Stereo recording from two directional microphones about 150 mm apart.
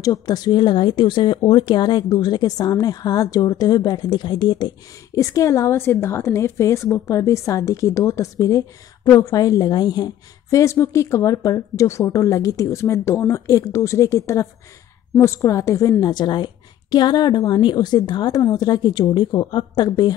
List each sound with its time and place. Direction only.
0.0 s speech: 25° left (ahead or behind)